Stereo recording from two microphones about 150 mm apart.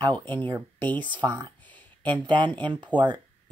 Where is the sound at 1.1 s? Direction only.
30° right (ahead or behind).